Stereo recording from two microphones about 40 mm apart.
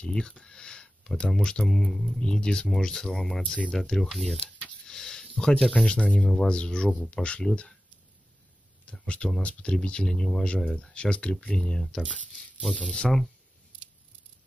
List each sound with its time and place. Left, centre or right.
0.0 s speech: centre
1.9 s speech: centre
2.1 s speech: centre
4.1 s speech: centre
4.8 s a sound: centre
5.7 s speech: left
9.0 s speech: left
10.4 s speech: left
11.3 s speech: centre
12.9 s speech: left